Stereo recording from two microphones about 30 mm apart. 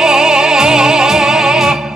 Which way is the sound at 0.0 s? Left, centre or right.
Right.